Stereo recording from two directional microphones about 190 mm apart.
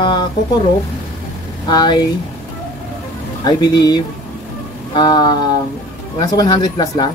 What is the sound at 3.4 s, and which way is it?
Speech, 20° left (ahead or behind).